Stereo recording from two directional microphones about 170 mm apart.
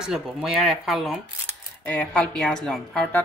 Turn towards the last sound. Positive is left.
turn(degrees=5)  # may be behind; listen again after turning